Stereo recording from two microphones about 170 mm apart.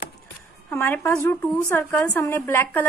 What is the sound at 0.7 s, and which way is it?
A woman's voice, 10° left (ahead or behind).